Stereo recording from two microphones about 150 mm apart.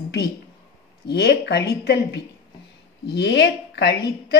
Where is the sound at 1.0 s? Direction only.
90° left.